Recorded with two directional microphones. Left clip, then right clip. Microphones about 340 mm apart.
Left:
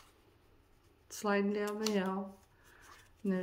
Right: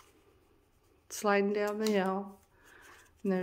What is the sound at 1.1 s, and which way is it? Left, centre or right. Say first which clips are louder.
Speech: right 5 dB; centre.